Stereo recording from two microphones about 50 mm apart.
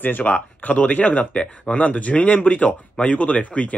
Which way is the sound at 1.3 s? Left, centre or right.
Left.